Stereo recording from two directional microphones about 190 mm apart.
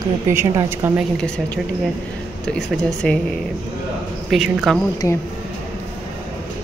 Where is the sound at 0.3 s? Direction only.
15° right (ahead or behind).